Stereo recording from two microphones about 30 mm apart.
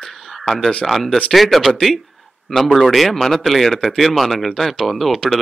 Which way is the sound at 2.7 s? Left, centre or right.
Centre.